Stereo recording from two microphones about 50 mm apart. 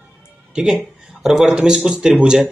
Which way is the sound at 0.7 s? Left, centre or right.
Centre.